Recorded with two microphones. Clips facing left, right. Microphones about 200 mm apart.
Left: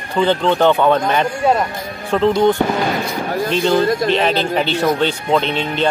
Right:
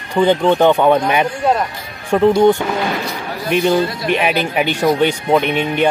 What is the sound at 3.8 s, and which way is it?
Speech, 45° left (ahead or behind).